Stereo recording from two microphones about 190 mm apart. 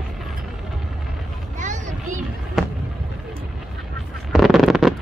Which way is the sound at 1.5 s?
40° right (ahead or behind).